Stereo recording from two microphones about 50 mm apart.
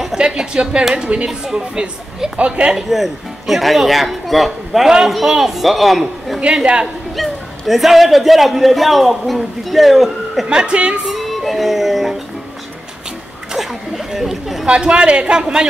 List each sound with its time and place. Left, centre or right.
0.2 s a woman's voice: centre
2.3 s a man's voice: right
2.7 s a man's voice: centre
6.6 s a man's voice: right
7.2 s a man's voice: centre
10.4 s a man's voice: centre
11.1 s music: centre
13.5 s a sound: centre
14.7 s a man's voice: right